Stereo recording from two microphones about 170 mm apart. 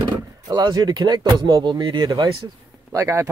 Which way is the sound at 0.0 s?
25° right (ahead or behind).